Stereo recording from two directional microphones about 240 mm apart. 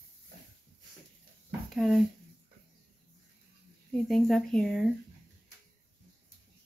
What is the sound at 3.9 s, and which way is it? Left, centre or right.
Speech, centre.